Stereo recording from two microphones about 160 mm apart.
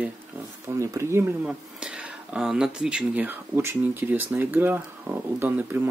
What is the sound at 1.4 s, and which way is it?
Speech, 5° right (ahead or behind).